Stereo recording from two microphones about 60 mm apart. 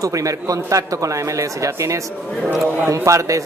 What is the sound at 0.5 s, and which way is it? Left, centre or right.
Speech, right.